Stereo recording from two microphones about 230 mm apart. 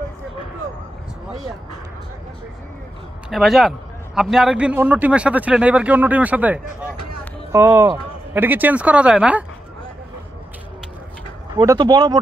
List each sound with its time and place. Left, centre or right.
3.3 s a man's voice: centre
11.5 s speech: centre